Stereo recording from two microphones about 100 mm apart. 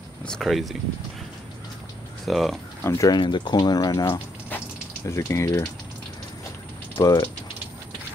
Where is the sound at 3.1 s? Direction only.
55° left (ahead or behind).